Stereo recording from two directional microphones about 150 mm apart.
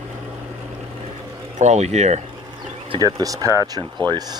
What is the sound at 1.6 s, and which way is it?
Speech, 50° right (ahead or behind).